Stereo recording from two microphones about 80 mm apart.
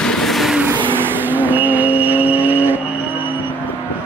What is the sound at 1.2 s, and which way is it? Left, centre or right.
Vehicle, right.